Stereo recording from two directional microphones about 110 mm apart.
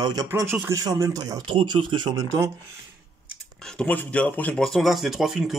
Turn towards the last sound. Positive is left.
turn(degrees=-5)  # may be behind; listen again after turning